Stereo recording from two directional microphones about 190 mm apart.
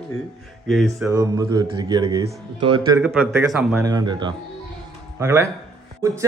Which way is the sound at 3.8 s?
20° right (ahead or behind).